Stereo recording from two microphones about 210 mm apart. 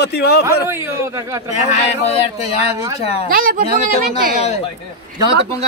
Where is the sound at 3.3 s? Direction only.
40° right (ahead or behind).